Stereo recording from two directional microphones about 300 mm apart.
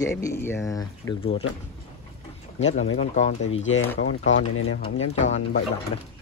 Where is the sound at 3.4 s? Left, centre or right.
Left.